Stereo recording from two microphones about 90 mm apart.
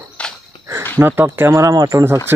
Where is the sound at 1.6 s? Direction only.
40° right (ahead or behind).